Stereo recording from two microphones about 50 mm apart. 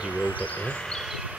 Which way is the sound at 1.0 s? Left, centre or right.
Centre.